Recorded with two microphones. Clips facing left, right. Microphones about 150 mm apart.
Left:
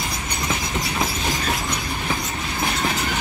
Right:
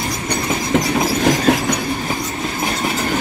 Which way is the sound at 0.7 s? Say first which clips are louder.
Right 9 dB; 70° right (ahead or behind).